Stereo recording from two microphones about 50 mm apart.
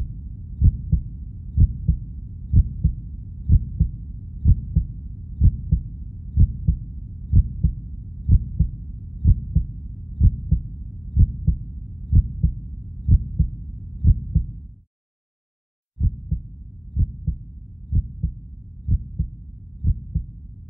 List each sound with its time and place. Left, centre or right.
0.6 s heart sounds: centre
16.3 s heart sounds: centre
19.8 s heart sounds: centre